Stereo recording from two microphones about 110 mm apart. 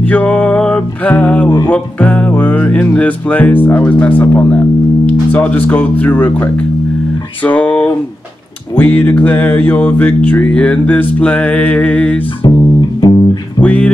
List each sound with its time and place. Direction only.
0.0 s music: 15° left (ahead or behind)
1.7 s speech: 15° left (ahead or behind)
8.7 s music: 15° left (ahead or behind)
12.4 s music: 45° left (ahead or behind)
13.6 s speech: 15° left (ahead or behind)